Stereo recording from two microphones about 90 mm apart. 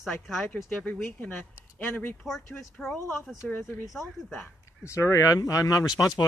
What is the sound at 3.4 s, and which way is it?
A man's voice, 25° left (ahead or behind).